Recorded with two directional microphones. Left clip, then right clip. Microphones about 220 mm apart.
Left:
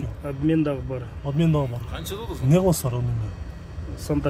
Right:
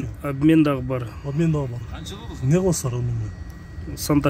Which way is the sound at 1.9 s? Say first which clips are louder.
Left 4 dB; 40° left (ahead or behind).